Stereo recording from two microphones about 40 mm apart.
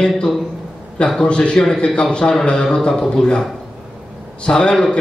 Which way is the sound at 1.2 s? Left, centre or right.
Left.